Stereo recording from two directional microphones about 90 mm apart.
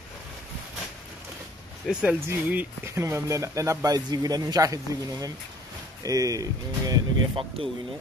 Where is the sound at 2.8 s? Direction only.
30° right (ahead or behind).